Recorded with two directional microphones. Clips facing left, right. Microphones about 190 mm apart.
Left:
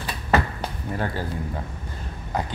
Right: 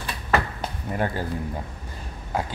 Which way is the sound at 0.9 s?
20° right (ahead or behind).